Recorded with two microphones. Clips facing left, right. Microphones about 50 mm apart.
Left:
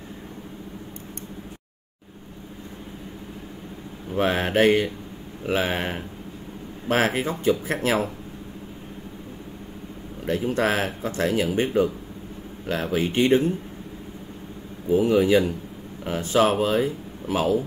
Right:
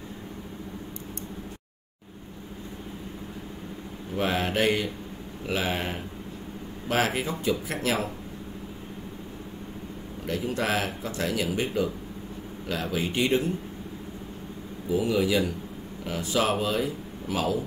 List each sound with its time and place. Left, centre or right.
4.1 s speech: left
7.2 s speech: left
10.2 s speech: left
14.9 s speech: left